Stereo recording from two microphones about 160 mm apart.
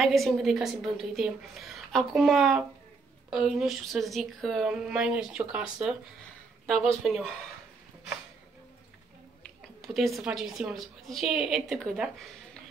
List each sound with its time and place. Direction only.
0.0 s speech: centre (ahead or behind)
9.8 s speech: centre (ahead or behind)